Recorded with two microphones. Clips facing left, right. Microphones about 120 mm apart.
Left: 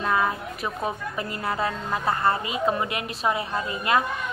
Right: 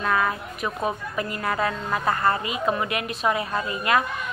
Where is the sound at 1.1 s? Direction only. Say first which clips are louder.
Right 2 dB; 25° left (ahead or behind).